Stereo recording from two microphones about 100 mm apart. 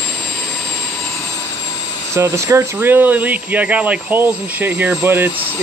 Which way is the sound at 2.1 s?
30° right (ahead or behind).